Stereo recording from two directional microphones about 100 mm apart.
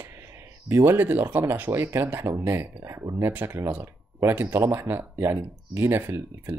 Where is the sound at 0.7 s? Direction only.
25° right (ahead or behind).